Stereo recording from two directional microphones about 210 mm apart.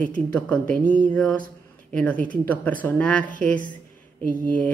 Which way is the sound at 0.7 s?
40° right (ahead or behind).